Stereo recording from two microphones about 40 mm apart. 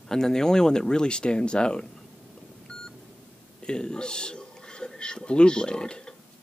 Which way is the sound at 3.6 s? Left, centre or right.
Centre.